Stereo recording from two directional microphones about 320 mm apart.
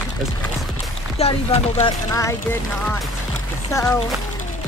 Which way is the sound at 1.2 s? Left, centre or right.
Centre.